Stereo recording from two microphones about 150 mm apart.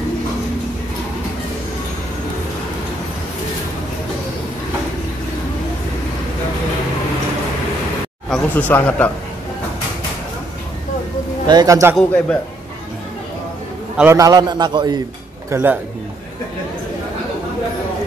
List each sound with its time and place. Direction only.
8.3 s speech: 10° left (ahead or behind)
11.4 s a man's voice: 25° right (ahead or behind)
13.9 s a man's voice: 20° right (ahead or behind)
15.5 s a man's voice: 15° right (ahead or behind)